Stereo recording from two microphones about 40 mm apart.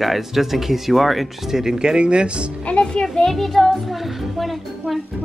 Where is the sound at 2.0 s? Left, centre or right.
Right.